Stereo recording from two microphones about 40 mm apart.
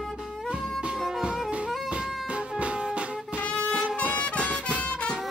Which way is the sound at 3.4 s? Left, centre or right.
Left.